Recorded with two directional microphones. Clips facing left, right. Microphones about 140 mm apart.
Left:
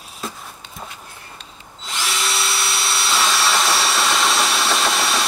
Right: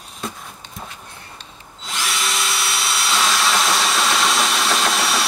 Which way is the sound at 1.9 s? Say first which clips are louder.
Even; centre (ahead or behind).